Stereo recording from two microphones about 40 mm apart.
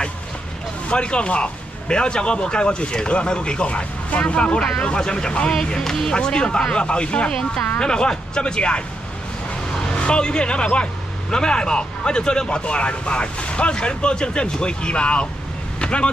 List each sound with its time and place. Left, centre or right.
0.8 s speech: left